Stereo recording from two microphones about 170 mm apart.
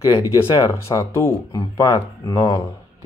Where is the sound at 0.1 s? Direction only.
20° left (ahead or behind).